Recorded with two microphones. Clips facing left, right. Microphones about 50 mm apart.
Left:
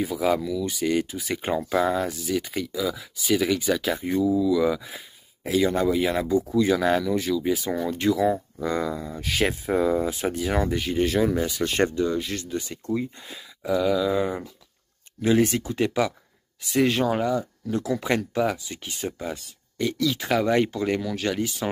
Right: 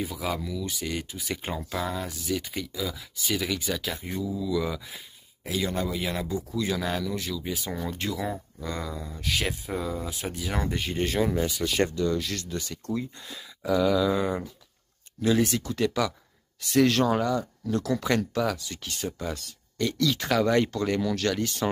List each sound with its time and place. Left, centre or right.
0.4 s speech: centre
0.8 s speech: centre
2.2 s speech: centre; by 7.9 s left
8.0 s speech: centre
8.7 s speech: left
10.2 s speech: left
10.5 s speech: centre
11.6 s speech: left
13.6 s speech: centre
15.2 s speech: left
16.6 s speech: centre